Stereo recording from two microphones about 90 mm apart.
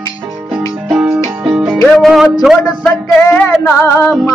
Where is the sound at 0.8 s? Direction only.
10° right (ahead or behind).